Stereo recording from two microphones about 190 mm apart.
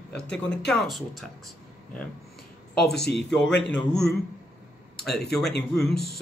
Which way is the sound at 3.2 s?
5° left (ahead or behind).